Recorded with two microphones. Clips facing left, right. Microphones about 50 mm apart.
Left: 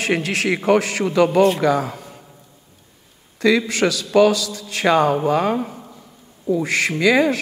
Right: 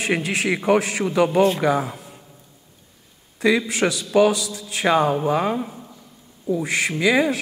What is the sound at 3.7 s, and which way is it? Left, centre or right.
A man's voice, centre.